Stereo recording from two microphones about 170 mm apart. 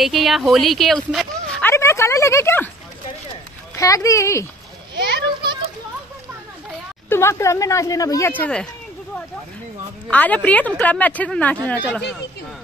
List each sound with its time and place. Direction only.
0.0 s a woman's voice: centre (ahead or behind)
3.7 s speech: 20° left (ahead or behind)
4.9 s children playing: 80° right
7.1 s speech: 15° left (ahead or behind)
10.0 s speech: 10° left (ahead or behind)